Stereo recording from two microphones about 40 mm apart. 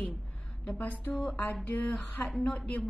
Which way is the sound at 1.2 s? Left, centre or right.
Left.